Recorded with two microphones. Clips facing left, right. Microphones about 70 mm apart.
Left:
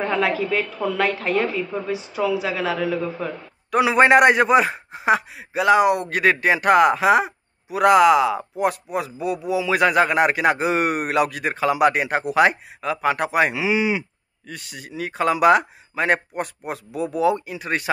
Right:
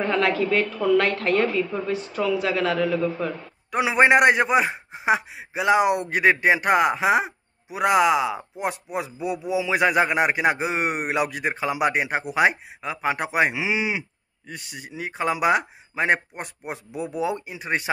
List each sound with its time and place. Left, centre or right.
0.0 s a woman's voice: centre
3.7 s a man's voice: centre